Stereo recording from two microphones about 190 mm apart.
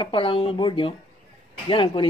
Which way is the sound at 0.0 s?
25° left (ahead or behind).